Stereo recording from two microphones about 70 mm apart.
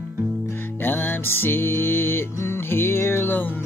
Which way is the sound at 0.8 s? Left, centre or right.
Left.